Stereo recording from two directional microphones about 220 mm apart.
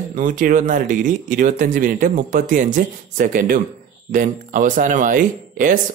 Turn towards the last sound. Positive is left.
turn(degrees=-35)  # may be behind; listen again after turning